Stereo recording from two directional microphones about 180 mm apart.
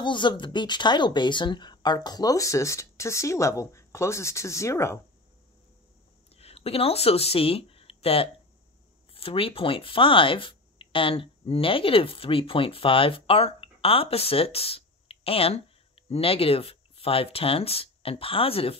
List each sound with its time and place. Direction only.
0.0 s speech: 25° left (ahead or behind)
6.3 s speech: 35° left (ahead or behind)